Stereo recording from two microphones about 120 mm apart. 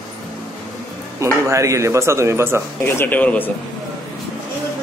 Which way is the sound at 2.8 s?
20° left (ahead or behind).